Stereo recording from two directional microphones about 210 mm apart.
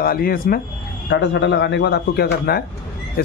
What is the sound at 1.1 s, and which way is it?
Speech, 55° left (ahead or behind).